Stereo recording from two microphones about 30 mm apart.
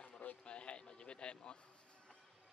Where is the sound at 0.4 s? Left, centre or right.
Left.